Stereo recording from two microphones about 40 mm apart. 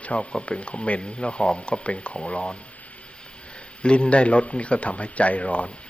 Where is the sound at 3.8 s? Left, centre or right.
Left.